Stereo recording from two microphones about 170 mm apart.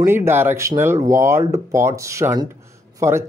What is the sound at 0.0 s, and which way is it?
Speech, 15° right (ahead or behind).